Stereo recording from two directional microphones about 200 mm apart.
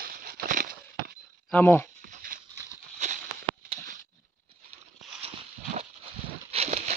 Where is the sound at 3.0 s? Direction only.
40° right (ahead or behind).